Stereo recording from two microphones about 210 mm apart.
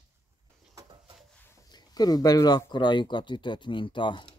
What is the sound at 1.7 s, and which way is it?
Speech, 20° left (ahead or behind).